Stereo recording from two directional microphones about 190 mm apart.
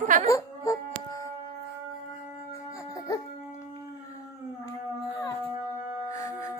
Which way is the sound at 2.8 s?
15° left (ahead or behind).